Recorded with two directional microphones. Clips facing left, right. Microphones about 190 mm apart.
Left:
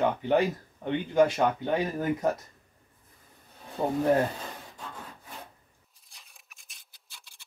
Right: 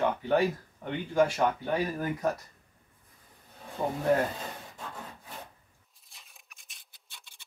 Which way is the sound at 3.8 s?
15° left (ahead or behind).